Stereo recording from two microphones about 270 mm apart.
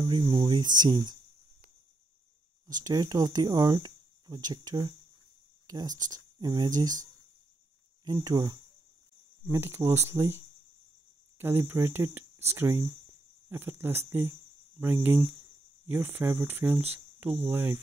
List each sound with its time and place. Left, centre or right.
0.0 s speech: centre
2.6 s speech: centre